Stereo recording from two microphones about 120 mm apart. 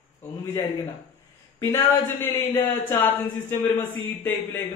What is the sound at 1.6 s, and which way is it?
Speech, 20° left (ahead or behind).